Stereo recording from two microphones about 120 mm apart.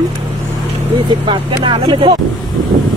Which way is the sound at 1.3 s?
45° right (ahead or behind).